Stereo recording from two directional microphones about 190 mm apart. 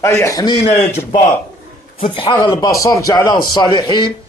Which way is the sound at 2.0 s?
25° left (ahead or behind).